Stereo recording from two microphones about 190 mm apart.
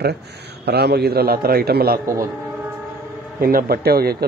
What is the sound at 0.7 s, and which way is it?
A man's voice, 55° right (ahead or behind).